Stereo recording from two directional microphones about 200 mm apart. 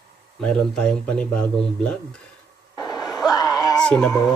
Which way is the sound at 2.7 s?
20° left (ahead or behind).